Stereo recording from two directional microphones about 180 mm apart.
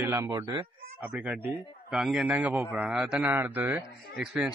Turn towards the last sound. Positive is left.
turn(degrees=-5)  # may be behind; listen again after turning